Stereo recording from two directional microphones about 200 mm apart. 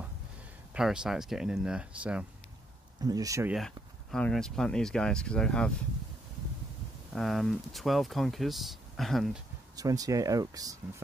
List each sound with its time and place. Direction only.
0.7 s speech: 5° right (ahead or behind)
3.0 s speech: 20° right (ahead or behind)
3.5 s speech: centre (ahead or behind)
7.1 s speech: centre (ahead or behind)
9.8 s speech: 15° right (ahead or behind)